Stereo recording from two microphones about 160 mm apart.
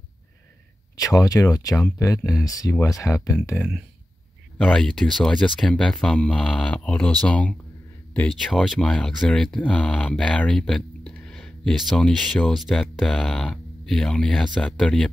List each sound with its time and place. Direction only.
0.9 s speech: 20° left (ahead or behind); by 15.0 s 5° left (ahead or behind)